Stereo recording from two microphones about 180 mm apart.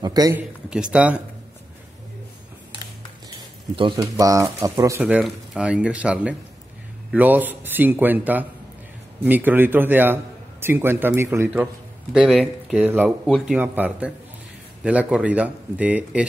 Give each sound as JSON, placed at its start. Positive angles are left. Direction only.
{"t": 0.0, "sound": "a sound", "side_deg": -20}
{"t": 0.7, "sound": "speech", "side_deg": -5}
{"t": 3.7, "sound": "speech", "side_deg": -25}
{"t": 5.0, "sound": "a man's voice", "side_deg": -5}